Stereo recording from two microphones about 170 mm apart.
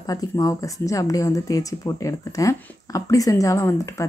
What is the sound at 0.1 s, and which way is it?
Speech, 20° left (ahead or behind).